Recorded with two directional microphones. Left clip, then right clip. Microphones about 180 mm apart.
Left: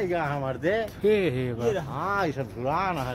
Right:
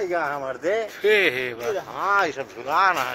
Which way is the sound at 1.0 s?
5° left (ahead or behind).